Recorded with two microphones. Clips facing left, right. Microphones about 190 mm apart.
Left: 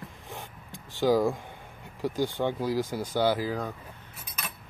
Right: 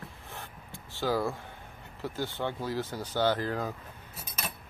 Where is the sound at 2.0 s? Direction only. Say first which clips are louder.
Left 6 dB; 15° left (ahead or behind).